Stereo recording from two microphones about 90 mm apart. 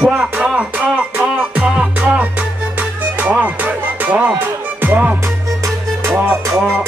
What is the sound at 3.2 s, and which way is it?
Music, 20° right (ahead or behind).